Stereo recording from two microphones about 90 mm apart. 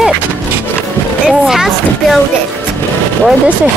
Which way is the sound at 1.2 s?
5° right (ahead or behind).